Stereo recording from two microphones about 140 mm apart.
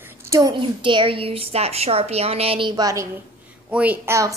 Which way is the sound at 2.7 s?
25° right (ahead or behind).